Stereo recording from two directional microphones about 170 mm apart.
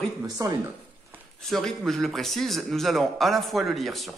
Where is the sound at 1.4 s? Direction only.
Centre (ahead or behind).